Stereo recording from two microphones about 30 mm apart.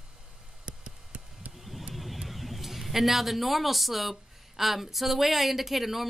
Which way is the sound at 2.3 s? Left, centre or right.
Centre.